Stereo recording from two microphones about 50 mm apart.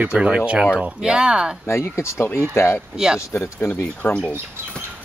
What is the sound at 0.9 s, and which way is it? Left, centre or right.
Speech, centre.